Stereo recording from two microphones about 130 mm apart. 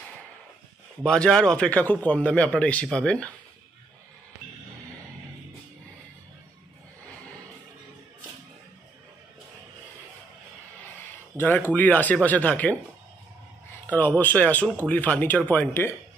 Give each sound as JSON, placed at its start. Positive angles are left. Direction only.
{"t": 1.0, "sound": "a man's voice", "side_deg": 5}
{"t": 11.3, "sound": "a man's voice", "side_deg": 15}
{"t": 13.8, "sound": "a man's voice", "side_deg": 15}